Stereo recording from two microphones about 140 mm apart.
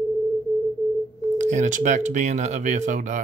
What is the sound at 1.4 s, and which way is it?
Speech, 60° right (ahead or behind).